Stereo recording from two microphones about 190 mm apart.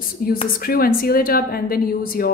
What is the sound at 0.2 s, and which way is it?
Speech, 50° left (ahead or behind).